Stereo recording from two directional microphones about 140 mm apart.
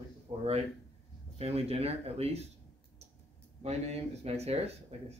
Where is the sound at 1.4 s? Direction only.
45° right (ahead or behind).